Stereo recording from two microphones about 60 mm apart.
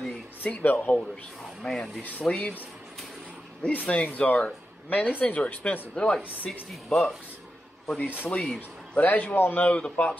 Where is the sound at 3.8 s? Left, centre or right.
Left.